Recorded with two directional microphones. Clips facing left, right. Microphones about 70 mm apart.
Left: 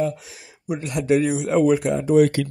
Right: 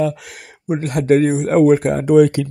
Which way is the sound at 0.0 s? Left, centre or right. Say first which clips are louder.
Right 4 dB; right.